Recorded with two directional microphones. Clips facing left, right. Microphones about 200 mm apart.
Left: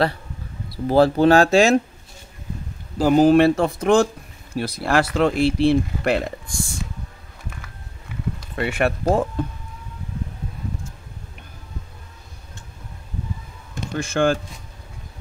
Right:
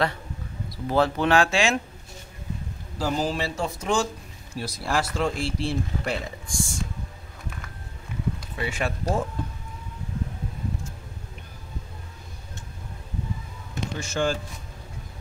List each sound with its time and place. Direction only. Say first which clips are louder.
0.8 s speech: left 7 dB; 35° left (ahead or behind)
3.0 s speech: left 13 dB; 60° left (ahead or behind)
8.5 s speech: left 9 dB; 60° left (ahead or behind)
13.9 s speech: left 7 dB; 55° left (ahead or behind)